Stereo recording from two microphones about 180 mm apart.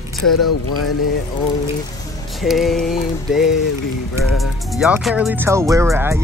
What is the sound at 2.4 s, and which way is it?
Speech, centre (ahead or behind).